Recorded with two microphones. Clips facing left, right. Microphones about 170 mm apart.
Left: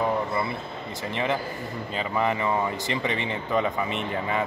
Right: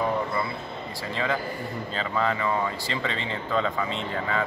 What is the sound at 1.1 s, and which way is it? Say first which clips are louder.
Speech: left 1 dB; 20° left (ahead or behind).